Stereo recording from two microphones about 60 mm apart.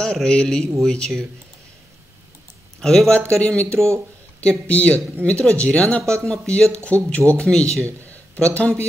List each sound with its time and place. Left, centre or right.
0.0 s speech: centre
2.8 s speech: centre